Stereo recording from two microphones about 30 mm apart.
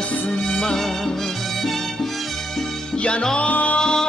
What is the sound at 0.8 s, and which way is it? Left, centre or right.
Music, centre.